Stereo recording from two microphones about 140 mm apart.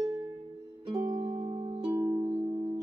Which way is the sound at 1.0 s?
25° right (ahead or behind).